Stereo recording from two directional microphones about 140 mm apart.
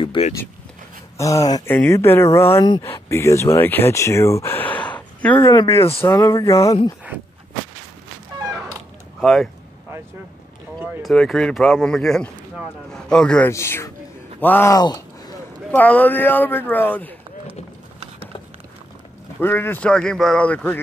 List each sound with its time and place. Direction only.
0.0 s speech: 35° left (ahead or behind)
1.1 s speech: 25° left (ahead or behind)
5.4 s speech: 25° left (ahead or behind)
9.2 s speech: centre (ahead or behind)
10.8 s a man's voice: centre (ahead or behind)
13.5 s speech: 20° left (ahead or behind)
14.8 s a sound: 30° left (ahead or behind)
15.7 s speech: 10° left (ahead or behind)
19.4 s speech: 15° left (ahead or behind)